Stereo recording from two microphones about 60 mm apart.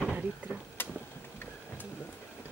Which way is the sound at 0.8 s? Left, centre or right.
Left.